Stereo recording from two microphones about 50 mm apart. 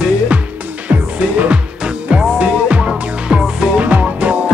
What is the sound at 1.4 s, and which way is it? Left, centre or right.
Music, right.